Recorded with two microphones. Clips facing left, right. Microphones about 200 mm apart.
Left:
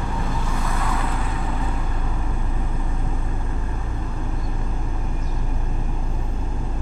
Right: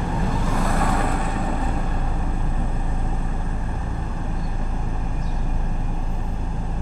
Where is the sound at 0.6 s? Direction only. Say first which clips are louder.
Right 4 dB; 45° right (ahead or behind).